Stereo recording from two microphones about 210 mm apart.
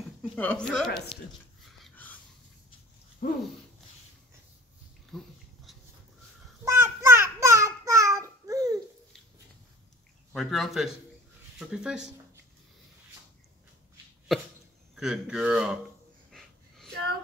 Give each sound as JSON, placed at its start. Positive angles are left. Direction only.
{"t": 0.4, "sound": "a man's voice", "side_deg": 5}
{"t": 1.8, "sound": "dog", "side_deg": 10}
{"t": 3.2, "sound": "a sound", "side_deg": 45}
{"t": 5.1, "sound": "speech", "side_deg": 0}
{"t": 6.6, "sound": "a sound", "side_deg": -15}
{"t": 10.3, "sound": "a man's voice", "side_deg": 0}
{"t": 15.0, "sound": "a man's voice", "side_deg": -5}
{"t": 16.3, "sound": "wheeze", "side_deg": 0}